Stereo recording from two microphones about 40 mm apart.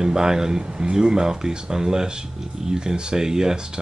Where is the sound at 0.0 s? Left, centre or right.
Centre.